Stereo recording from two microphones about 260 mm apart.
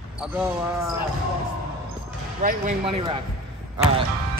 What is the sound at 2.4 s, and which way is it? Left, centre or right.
Speech, right.